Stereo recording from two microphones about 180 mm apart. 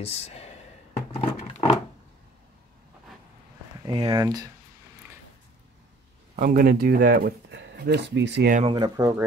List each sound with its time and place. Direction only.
0.0 s speech: 35° left (ahead or behind)
1.1 s roaring cats: 35° left (ahead or behind)
3.8 s speech: 25° right (ahead or behind)
6.3 s speech: 45° right (ahead or behind); by 8.5 s 70° right (ahead or behind)
8.6 s speech: 25° right (ahead or behind)